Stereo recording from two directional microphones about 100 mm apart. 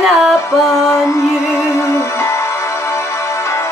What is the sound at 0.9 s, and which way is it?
Music, 30° left (ahead or behind).